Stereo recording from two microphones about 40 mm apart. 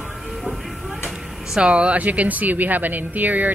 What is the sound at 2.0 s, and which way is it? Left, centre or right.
Speech, right.